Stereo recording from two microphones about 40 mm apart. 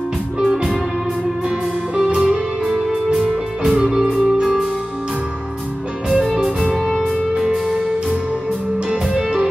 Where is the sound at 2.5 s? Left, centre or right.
Centre.